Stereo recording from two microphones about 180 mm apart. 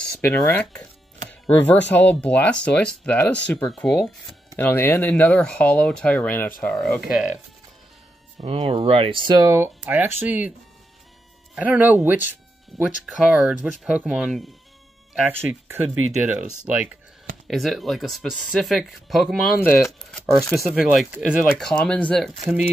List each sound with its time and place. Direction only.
0.0 s speech: 10° left (ahead or behind)
8.4 s speech: 30° right (ahead or behind); by 10.5 s 10° right (ahead or behind)
11.5 s speech: 10° right (ahead or behind)
19.9 s a sound: centre (ahead or behind)
20.5 s speech: centre (ahead or behind)